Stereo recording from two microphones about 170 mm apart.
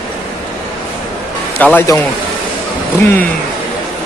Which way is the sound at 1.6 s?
10° left (ahead or behind).